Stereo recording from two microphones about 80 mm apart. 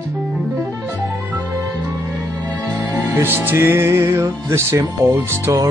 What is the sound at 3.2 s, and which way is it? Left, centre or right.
Music, right.